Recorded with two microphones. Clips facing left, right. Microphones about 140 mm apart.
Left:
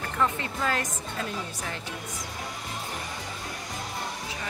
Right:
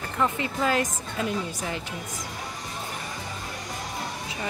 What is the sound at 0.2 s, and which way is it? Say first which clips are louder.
Speech: right 3 dB; 15° right (ahead or behind).